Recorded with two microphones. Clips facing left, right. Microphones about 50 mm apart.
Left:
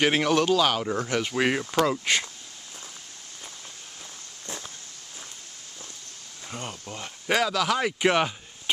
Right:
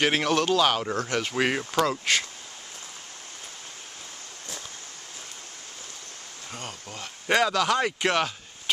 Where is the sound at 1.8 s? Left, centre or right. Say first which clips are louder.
Even; centre.